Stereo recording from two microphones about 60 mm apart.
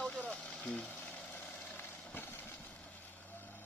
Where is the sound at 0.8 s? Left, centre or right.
Left.